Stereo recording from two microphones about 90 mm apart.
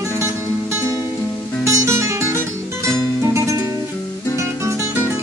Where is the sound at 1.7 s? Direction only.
30° right (ahead or behind).